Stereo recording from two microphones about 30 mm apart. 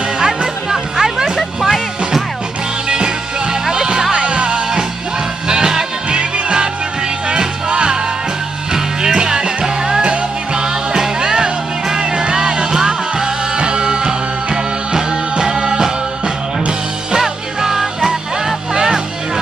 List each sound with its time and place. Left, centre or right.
0.2 s music: centre
1.6 s music: centre
2.9 s music: right
17.2 s music: centre